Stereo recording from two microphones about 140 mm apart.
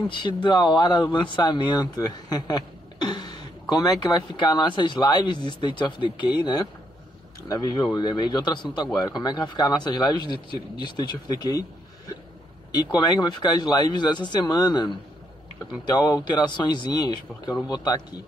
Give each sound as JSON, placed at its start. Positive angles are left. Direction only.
{"t": 0.1, "sound": "a man's voice", "side_deg": 35}
{"t": 12.7, "sound": "a man's voice", "side_deg": 30}